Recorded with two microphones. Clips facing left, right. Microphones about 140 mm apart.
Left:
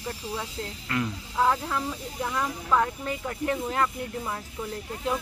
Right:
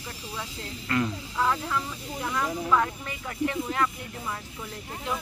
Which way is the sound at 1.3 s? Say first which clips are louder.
Left 3 dB; 30° left (ahead or behind).